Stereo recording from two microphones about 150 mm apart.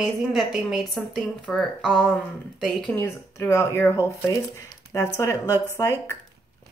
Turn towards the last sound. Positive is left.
turn(degrees=15)  # may be behind; listen again after turning